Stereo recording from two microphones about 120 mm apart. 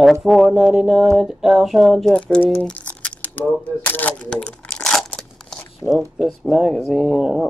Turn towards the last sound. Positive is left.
turn(degrees=-5)  # may be behind; listen again after turning